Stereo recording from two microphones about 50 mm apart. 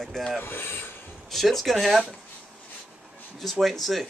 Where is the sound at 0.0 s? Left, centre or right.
Centre.